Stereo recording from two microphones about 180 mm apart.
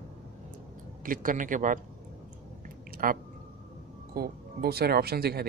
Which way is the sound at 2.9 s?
50° right (ahead or behind).